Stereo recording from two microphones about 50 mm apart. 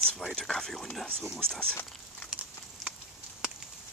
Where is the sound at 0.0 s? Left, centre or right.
Centre.